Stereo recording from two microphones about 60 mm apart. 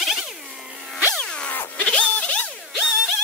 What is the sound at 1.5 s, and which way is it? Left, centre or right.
Music, left.